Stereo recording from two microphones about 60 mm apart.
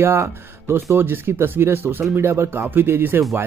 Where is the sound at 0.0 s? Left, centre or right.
Right.